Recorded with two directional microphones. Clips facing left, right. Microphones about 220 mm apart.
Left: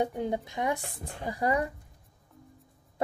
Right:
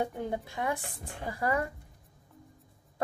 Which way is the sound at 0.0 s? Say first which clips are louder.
Left 3 dB; 20° left (ahead or behind).